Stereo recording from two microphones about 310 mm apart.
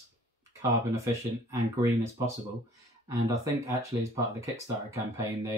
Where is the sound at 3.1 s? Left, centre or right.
Centre.